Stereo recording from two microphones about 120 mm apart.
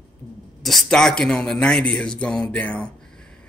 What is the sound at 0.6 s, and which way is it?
Speech, 5° left (ahead or behind).